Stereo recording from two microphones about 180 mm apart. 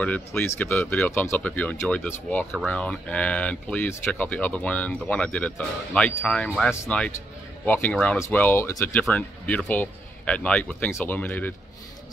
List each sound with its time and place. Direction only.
0.0 s speech: 10° left (ahead or behind)